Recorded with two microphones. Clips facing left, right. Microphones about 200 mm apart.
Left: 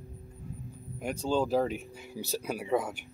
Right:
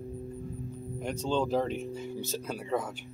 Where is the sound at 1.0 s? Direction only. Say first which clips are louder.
Left 1 dB; 5° left (ahead or behind).